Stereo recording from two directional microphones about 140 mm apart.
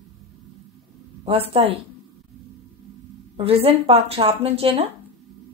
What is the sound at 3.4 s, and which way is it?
Speech, 45° right (ahead or behind).